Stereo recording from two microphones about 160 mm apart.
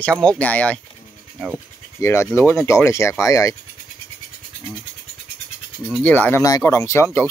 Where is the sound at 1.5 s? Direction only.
15° left (ahead or behind).